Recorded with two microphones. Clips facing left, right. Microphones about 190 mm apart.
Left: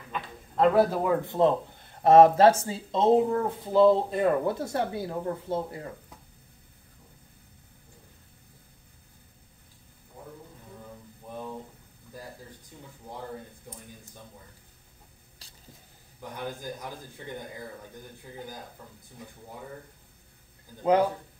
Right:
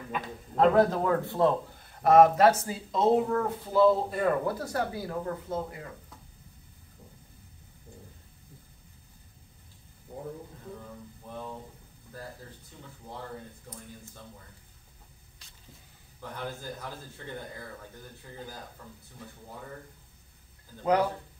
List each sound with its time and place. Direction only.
0.1 s speech: 5° left (ahead or behind)
2.0 s speech: 30° left (ahead or behind)
11.2 s a sound: 15° left (ahead or behind)
13.7 s a man's voice: 15° left (ahead or behind)
16.2 s a man's voice: 15° left (ahead or behind)
19.2 s a man's voice: 15° left (ahead or behind)